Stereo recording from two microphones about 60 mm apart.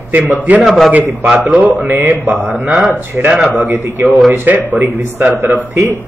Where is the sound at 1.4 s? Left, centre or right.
Right.